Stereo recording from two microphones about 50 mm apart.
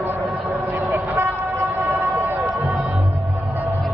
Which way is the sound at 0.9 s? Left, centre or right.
Right.